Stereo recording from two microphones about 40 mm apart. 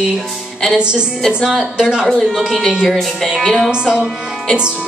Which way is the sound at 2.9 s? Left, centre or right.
Centre.